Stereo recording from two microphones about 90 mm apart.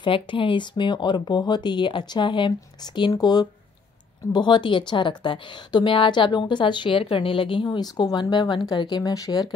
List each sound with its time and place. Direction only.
0.0 s a woman's voice: 70° left (ahead or behind)
3.1 s a woman's voice: 50° left (ahead or behind); by 7.6 s 75° left (ahead or behind)
7.6 s speech: 45° left (ahead or behind)